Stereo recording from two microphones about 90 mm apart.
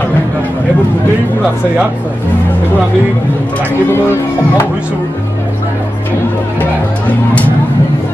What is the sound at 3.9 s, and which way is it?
Speech, 25° left (ahead or behind).